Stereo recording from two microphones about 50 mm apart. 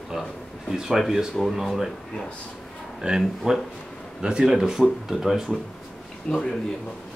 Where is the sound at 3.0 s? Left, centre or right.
Centre.